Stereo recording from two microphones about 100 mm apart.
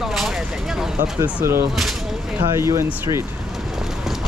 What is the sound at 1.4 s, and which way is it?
Speech, 25° right (ahead or behind).